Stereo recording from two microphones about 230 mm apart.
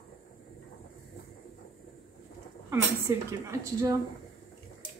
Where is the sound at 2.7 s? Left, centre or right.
Centre.